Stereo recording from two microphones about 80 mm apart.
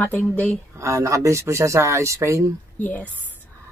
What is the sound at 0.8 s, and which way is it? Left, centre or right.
Speech, right.